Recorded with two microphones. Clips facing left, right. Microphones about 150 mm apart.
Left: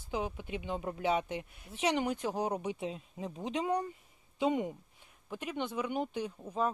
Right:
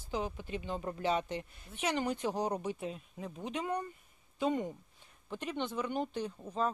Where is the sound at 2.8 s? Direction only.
25° left (ahead or behind).